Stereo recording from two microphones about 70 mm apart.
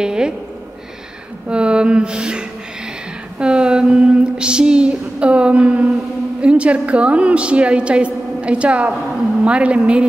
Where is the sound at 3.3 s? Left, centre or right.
Centre.